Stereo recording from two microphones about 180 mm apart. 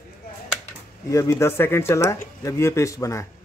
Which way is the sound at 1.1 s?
15° left (ahead or behind).